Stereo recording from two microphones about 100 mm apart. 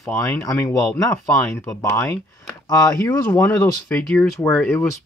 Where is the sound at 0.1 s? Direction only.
25° left (ahead or behind).